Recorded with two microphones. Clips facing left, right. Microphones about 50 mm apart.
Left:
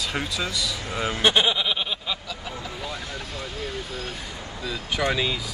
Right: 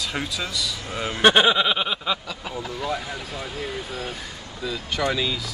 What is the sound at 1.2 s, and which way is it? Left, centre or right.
Speech, right.